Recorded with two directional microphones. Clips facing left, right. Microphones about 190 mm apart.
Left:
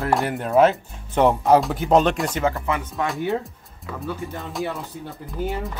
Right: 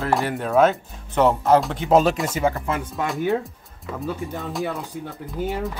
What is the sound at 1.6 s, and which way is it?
Speech, centre (ahead or behind).